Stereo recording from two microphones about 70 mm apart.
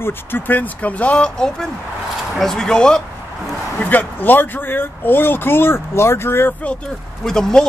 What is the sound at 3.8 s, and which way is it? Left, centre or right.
Speech, left.